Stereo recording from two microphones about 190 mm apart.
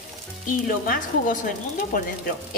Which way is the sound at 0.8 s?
45° left (ahead or behind).